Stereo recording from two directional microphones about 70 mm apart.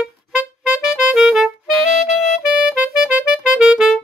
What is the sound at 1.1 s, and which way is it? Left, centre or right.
Music, centre.